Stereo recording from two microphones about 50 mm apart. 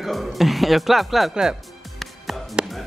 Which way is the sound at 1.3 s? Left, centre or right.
Centre.